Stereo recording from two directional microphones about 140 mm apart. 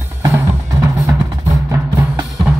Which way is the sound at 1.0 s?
25° right (ahead or behind).